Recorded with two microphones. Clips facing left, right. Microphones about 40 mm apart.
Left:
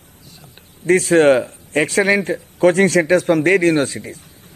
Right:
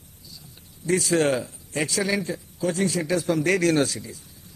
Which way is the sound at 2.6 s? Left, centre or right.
Left.